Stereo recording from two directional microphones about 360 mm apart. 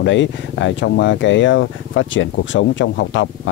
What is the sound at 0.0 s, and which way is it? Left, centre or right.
Speech, left.